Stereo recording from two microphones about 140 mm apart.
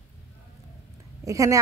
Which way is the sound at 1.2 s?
25° right (ahead or behind).